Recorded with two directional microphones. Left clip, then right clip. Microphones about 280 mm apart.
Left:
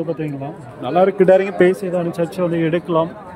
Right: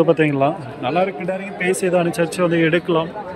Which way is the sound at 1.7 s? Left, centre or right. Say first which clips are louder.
Right 3 dB; centre.